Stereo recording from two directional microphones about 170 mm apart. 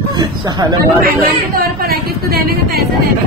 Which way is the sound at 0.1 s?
25° right (ahead or behind).